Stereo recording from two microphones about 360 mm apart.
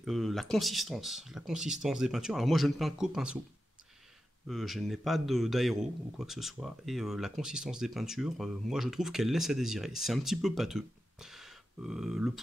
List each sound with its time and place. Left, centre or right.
0.0 s a man's voice: centre
4.5 s a man's voice: centre